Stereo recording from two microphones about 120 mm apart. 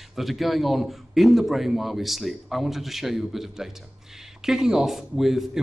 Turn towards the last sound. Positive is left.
turn(degrees=0)  # may be behind; listen again after turning